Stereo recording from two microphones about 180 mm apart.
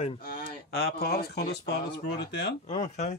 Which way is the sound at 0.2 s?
65° left (ahead or behind).